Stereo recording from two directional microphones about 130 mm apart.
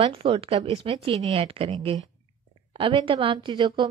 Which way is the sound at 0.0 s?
45° right (ahead or behind).